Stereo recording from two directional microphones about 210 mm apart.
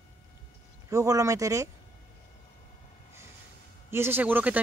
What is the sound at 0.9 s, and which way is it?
Speech, 15° right (ahead or behind).